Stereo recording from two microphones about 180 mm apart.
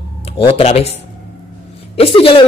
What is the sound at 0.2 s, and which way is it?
Speech, 35° left (ahead or behind).